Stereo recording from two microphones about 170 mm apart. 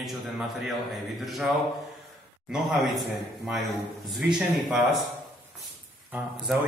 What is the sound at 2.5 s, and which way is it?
Speech, 5° right (ahead or behind).